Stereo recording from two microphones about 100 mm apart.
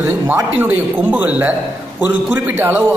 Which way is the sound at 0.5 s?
15° right (ahead or behind).